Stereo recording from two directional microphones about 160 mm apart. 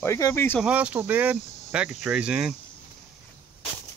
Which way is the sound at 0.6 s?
10° right (ahead or behind).